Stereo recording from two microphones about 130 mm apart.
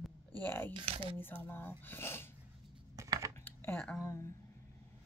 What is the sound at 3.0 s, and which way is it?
Computer keyboard, 25° right (ahead or behind).